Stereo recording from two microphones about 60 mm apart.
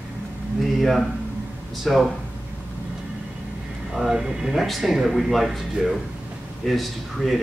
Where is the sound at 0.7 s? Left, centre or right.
Centre.